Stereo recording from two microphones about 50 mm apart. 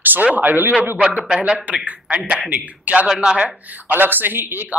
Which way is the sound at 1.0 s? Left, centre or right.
Centre.